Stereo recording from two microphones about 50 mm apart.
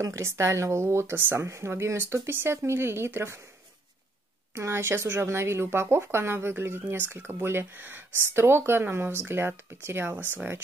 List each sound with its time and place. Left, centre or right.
0.0 s speech: right
4.6 s speech: right